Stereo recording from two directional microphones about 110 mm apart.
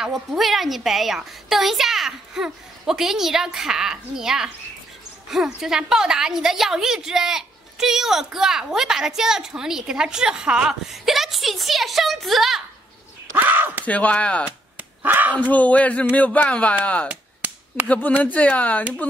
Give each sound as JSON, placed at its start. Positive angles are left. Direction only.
{"t": 0.0, "sound": "a woman's voice", "side_deg": -5}
{"t": 5.6, "sound": "a woman's voice", "side_deg": -5}
{"t": 13.4, "sound": "a sound", "side_deg": -15}
{"t": 13.8, "sound": "speech", "side_deg": 15}
{"t": 15.0, "sound": "speech", "side_deg": -15}
{"t": 15.3, "sound": "speech", "side_deg": 15}
{"t": 17.1, "sound": "a sound", "side_deg": -15}
{"t": 17.8, "sound": "speech", "side_deg": 15}